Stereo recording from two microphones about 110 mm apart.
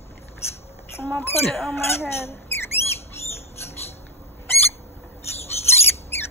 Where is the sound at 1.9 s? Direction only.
20° left (ahead or behind).